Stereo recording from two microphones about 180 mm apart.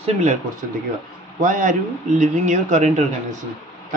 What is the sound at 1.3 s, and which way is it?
Speech, 45° right (ahead or behind).